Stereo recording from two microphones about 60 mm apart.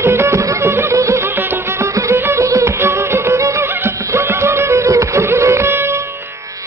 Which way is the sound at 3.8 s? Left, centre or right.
Right.